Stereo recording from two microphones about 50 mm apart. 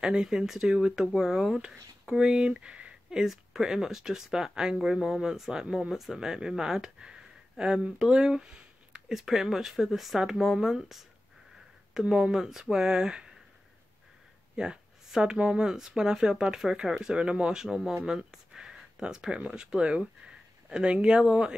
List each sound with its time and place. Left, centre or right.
0.0 s speech: centre
14.5 s speech: centre